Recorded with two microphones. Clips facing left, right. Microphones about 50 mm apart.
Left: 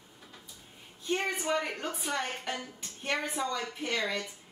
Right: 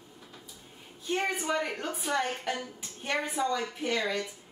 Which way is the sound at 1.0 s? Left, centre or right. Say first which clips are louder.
Right 1 dB; centre.